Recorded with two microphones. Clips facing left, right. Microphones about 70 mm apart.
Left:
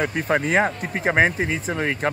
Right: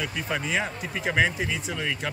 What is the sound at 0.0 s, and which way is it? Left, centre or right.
Speech, left.